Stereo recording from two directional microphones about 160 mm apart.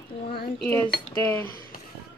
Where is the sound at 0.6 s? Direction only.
10° left (ahead or behind).